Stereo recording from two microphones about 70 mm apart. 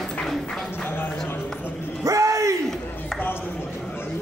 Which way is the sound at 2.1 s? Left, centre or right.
Right.